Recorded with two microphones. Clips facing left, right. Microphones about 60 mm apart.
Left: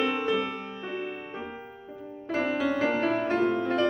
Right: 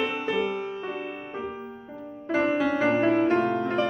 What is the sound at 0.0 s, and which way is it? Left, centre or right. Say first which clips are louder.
Music: even; centre.